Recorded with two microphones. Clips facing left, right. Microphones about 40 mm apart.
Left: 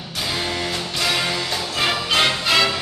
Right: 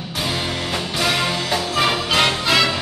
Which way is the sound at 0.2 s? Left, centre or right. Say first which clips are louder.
Even; centre.